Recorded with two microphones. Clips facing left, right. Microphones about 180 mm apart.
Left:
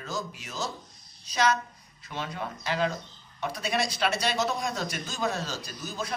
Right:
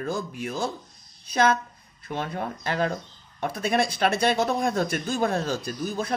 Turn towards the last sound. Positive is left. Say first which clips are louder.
# right 7 dB
turn(degrees=-55)  # may be behind; listen again after turning